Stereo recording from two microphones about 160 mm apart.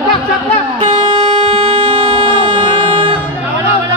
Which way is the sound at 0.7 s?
40° right (ahead or behind).